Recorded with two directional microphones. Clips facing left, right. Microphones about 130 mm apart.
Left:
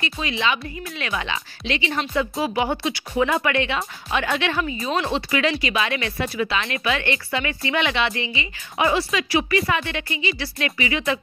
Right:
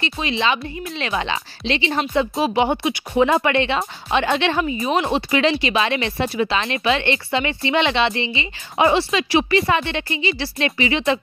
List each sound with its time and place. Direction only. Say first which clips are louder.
0.0 s speech: right 3 dB; 25° right (ahead or behind)